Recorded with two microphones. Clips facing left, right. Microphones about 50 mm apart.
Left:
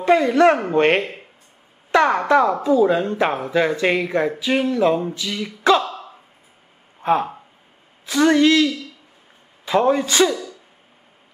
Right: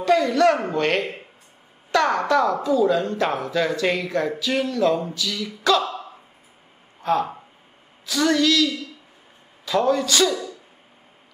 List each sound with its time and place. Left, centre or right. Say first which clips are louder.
0.0 s speech: left 3 dB; left
7.0 s a sound: left 3 dB; left
8.0 s speech: left 5 dB; left